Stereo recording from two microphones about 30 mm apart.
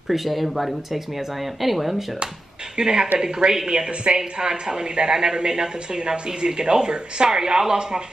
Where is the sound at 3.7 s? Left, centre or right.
Right.